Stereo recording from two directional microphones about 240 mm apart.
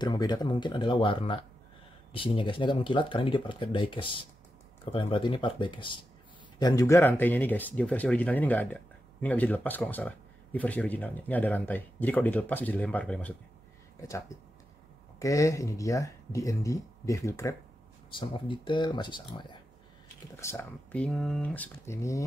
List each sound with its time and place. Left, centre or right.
0.0 s speech: centre
15.1 s speech: centre